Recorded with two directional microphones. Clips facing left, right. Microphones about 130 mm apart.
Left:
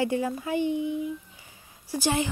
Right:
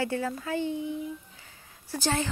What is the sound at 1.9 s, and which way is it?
Speech, 15° left (ahead or behind).